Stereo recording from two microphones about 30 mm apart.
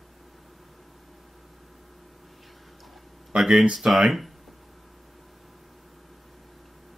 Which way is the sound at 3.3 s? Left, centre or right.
Centre.